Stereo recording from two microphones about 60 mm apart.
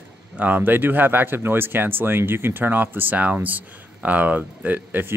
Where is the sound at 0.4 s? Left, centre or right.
Right.